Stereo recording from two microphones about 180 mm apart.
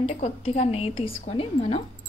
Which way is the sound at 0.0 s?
35° left (ahead or behind).